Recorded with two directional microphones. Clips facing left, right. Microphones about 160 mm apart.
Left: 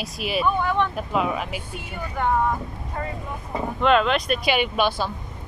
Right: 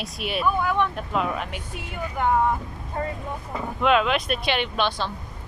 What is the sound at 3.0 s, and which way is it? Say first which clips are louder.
Speech: right 2 dB; 25° right (ahead or behind).